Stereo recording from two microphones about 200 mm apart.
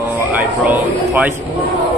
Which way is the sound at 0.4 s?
10° right (ahead or behind).